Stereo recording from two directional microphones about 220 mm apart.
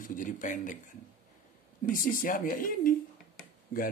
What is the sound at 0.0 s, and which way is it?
Speech, 35° left (ahead or behind).